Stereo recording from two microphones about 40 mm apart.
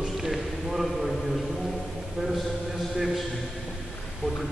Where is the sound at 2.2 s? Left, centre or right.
Centre.